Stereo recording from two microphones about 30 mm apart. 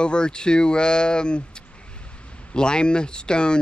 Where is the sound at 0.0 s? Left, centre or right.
Left.